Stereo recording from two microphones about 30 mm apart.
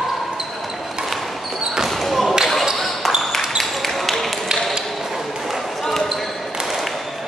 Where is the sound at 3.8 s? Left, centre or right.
Centre.